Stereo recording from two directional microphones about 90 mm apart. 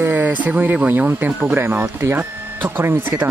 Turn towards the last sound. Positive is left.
turn(degrees=-20)  # may be behind; listen again after turning